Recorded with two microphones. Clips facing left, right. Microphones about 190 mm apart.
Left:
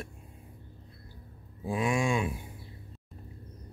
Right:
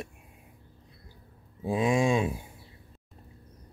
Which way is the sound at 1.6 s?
25° right (ahead or behind).